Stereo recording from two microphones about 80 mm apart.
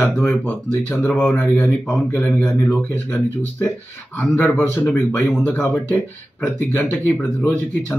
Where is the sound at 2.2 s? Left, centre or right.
Centre.